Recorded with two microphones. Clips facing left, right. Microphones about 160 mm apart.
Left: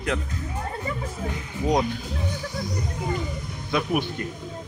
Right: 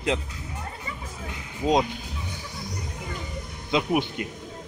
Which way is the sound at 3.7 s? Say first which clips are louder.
Right 1 dB; 20° right (ahead or behind).